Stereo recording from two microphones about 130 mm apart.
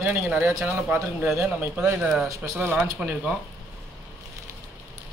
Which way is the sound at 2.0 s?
Centre (ahead or behind).